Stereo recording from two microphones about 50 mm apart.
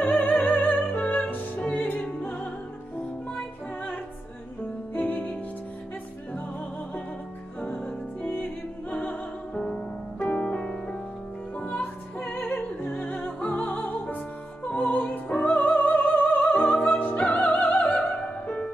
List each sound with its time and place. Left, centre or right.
0.1 s opera: left
0.5 s music: left
4.9 s music: left
7.6 s music: left
10.2 s piano: left
11.6 s music: left
12.5 s music: left